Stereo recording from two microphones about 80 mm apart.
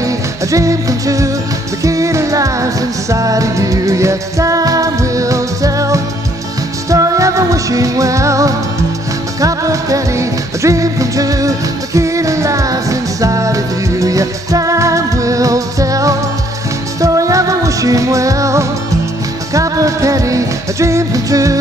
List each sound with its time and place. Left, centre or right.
0.0 s music: right